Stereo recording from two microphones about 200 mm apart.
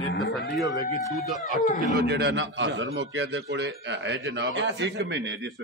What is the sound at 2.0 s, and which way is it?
A man's voice, 55° right (ahead or behind).